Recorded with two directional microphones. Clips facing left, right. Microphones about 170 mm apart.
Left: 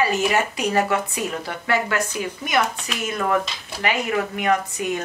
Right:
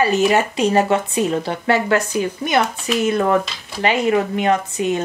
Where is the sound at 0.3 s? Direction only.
25° right (ahead or behind).